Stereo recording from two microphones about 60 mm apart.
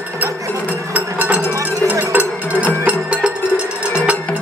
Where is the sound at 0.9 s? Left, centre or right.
Right.